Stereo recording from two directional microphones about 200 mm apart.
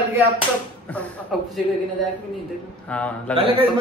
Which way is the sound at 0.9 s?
5° left (ahead or behind).